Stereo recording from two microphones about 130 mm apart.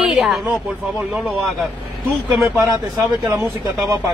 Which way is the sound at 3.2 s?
25° right (ahead or behind).